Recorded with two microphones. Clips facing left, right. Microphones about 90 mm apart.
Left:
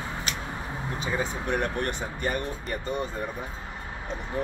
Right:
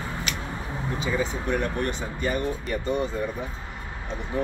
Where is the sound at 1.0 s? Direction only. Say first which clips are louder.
Right 2 dB; 50° left (ahead or behind).